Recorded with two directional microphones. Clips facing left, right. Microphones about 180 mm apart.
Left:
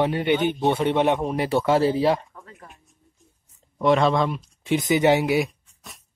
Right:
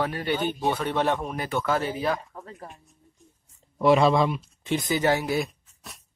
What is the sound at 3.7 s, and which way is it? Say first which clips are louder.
Speech: even; 5° right (ahead or behind).